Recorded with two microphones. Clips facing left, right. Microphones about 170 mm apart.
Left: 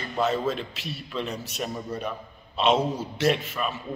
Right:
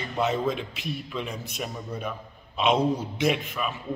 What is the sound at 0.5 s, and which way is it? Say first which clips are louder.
Speech: right 1 dB; 55° right (ahead or behind).